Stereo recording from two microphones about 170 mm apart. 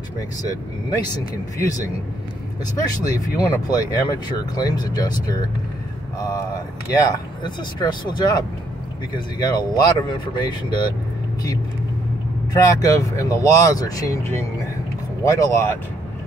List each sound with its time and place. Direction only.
0.4 s speech: 20° left (ahead or behind)
2.8 s speech: 20° left (ahead or behind)
12.5 s speech: 20° left (ahead or behind)